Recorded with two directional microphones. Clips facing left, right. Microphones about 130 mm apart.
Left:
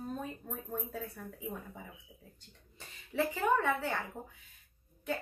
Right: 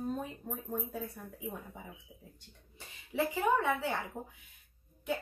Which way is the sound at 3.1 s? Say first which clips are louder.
Even; 15° right (ahead or behind).